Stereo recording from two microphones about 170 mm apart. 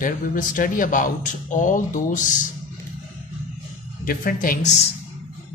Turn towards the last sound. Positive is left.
turn(degrees=45)  # may be behind; listen again after turning